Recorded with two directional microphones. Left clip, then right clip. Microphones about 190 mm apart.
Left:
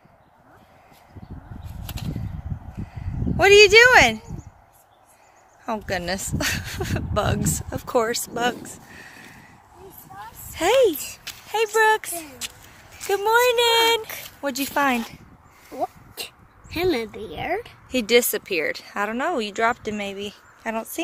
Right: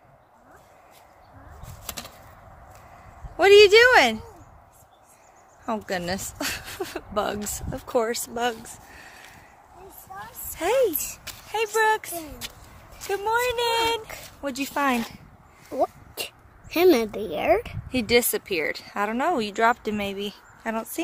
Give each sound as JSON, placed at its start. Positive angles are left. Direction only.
{"t": 3.3, "sound": "speech", "side_deg": 0}
{"t": 5.7, "sound": "speech", "side_deg": 5}
{"t": 10.5, "sound": "speech", "side_deg": 35}
{"t": 12.2, "sound": "speech", "side_deg": -10}
{"t": 13.1, "sound": "speech", "side_deg": 45}
{"t": 14.4, "sound": "speech", "side_deg": 25}
{"t": 15.7, "sound": "a sound", "side_deg": -50}
{"t": 16.7, "sound": "a woman's voice", "side_deg": -45}
{"t": 17.9, "sound": "speech", "side_deg": 5}